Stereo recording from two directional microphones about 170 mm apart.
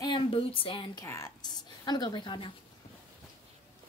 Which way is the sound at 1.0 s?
20° left (ahead or behind).